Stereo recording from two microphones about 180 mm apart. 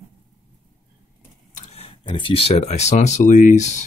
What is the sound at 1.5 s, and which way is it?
Speech, 40° left (ahead or behind).